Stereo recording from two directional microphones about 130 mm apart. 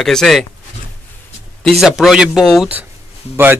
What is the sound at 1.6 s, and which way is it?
Speech, centre (ahead or behind).